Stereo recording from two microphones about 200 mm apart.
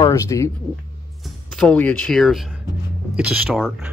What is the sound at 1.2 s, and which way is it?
Speech, 5° left (ahead or behind).